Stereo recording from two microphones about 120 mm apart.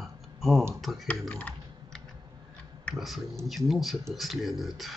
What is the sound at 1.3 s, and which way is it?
Computer keyboard, 15° left (ahead or behind).